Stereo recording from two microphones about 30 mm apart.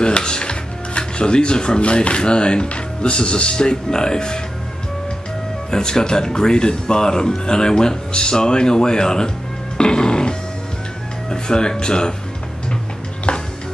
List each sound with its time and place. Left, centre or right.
0.0 s music: left
1.8 s speech: left
5.7 s speech: left